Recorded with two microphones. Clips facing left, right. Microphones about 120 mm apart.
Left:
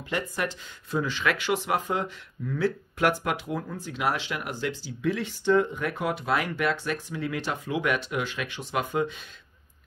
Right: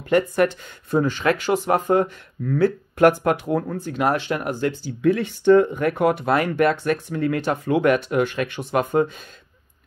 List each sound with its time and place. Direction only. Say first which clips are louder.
0.1 s speech: right 12 dB; 55° right (ahead or behind)